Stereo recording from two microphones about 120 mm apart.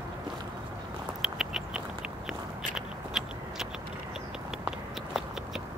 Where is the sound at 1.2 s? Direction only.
5° right (ahead or behind).